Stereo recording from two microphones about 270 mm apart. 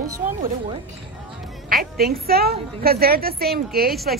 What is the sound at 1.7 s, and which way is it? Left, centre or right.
Speech, right.